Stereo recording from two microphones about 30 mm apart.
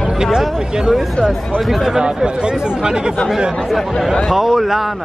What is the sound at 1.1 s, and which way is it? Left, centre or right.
Speech, left.